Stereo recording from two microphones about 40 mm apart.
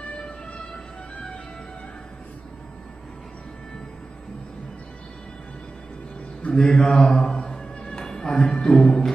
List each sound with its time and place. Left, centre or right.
1.1 s music: left
6.5 s speech: centre
7.1 s music: centre